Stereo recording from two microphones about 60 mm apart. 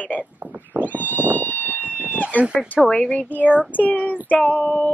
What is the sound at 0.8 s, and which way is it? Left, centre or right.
Cat, left.